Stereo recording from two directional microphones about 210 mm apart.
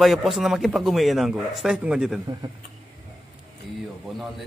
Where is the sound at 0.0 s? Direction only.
Centre (ahead or behind).